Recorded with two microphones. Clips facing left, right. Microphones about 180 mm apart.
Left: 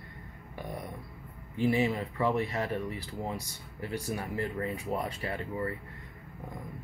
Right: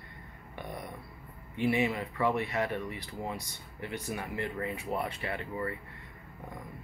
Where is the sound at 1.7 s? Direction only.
35° left (ahead or behind).